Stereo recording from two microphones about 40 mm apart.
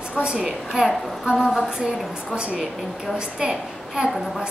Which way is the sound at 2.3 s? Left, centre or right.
Right.